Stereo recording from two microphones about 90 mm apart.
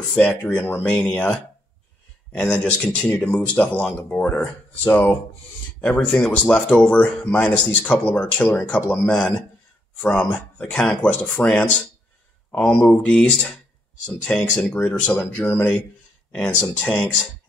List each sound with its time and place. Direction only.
0.1 s speech: 15° left (ahead or behind)
2.6 s speech: 15° left (ahead or behind)
9.9 s speech: 15° left (ahead or behind)